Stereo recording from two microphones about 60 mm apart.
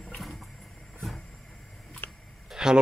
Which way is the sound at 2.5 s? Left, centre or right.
Centre.